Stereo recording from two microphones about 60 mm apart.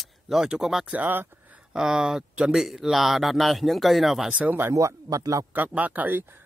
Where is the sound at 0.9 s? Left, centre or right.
Right.